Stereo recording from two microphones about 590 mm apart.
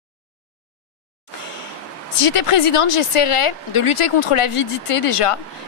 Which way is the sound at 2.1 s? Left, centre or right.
Left.